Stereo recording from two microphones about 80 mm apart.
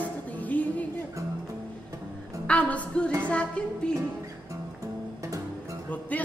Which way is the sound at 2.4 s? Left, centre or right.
Centre.